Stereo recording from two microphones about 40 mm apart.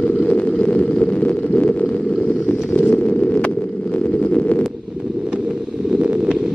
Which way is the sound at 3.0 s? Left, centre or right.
Left.